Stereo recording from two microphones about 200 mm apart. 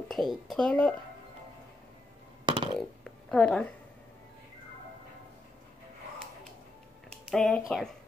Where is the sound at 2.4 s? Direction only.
25° right (ahead or behind).